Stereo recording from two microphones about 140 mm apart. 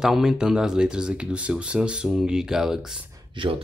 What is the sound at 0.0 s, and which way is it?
Speech, 5° right (ahead or behind).